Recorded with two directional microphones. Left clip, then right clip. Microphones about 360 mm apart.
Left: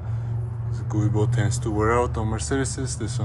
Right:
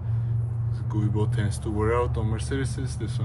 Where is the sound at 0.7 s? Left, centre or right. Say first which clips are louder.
Left 4 dB; centre.